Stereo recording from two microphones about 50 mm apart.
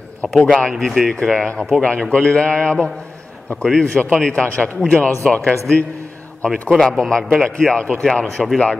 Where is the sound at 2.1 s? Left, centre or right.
Centre.